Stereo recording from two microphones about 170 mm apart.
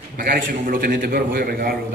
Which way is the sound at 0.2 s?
60° right (ahead or behind).